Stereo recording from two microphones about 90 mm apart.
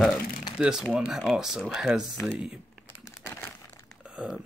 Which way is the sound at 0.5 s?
5° right (ahead or behind).